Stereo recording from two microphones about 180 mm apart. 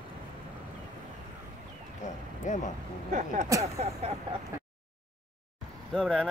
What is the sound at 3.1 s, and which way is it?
Speech, 45° right (ahead or behind).